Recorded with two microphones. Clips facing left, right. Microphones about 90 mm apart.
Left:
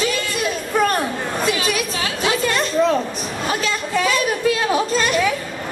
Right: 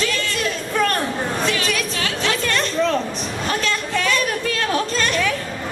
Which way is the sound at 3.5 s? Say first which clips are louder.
Left 1 dB; 10° left (ahead or behind).